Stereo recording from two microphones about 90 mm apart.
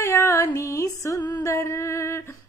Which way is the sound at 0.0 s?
35° left (ahead or behind).